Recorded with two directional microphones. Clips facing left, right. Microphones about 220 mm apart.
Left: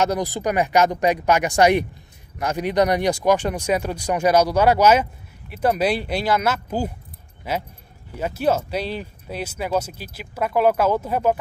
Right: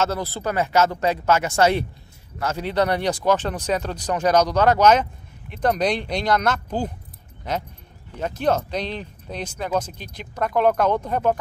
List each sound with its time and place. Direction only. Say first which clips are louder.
0.0 s speech: left 3 dB; 15° left (ahead or behind)